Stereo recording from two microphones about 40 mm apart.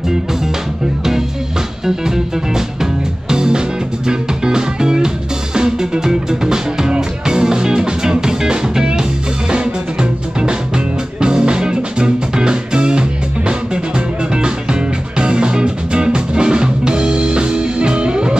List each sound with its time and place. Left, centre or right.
1.9 s music: centre